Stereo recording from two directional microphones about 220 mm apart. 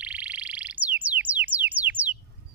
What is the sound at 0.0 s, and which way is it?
Frog, 5° right (ahead or behind).